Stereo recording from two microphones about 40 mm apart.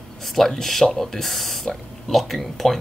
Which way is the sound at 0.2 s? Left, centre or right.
Centre.